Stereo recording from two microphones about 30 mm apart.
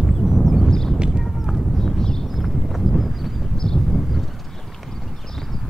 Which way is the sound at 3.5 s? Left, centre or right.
Left.